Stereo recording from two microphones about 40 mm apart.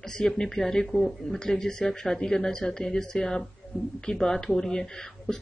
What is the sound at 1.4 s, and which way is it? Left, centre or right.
A woman's voice, centre.